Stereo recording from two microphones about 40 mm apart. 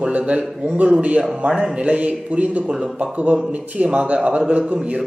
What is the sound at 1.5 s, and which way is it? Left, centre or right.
Speech, centre.